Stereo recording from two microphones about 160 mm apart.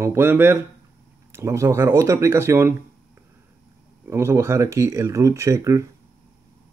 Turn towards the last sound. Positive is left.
turn(degrees=-20)  # may be behind; listen again after turning